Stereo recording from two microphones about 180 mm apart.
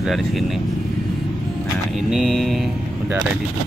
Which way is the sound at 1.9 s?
Centre (ahead or behind).